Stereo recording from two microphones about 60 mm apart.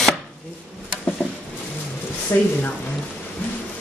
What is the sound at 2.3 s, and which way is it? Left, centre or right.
Speech, left.